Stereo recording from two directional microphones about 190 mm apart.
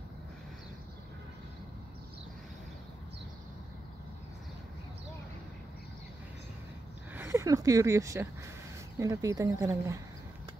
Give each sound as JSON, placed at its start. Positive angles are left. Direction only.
{"t": 7.2, "sound": "speech", "side_deg": -15}